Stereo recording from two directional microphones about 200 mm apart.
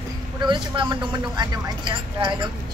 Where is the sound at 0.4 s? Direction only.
25° right (ahead or behind).